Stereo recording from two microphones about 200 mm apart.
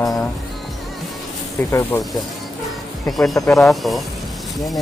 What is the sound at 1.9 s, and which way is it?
Speech, 10° left (ahead or behind).